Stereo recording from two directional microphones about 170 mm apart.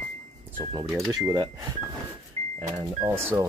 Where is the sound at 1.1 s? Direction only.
20° right (ahead or behind).